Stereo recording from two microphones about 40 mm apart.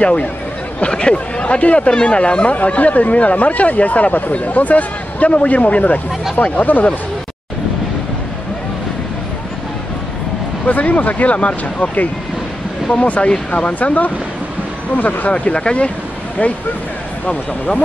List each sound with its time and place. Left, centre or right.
0.0 s speech: left
10.7 s speech: left